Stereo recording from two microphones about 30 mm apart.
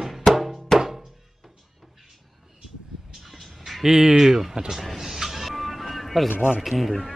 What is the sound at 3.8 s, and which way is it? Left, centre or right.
Speech, centre.